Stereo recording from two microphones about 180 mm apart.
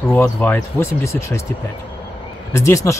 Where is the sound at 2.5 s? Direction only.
15° left (ahead or behind).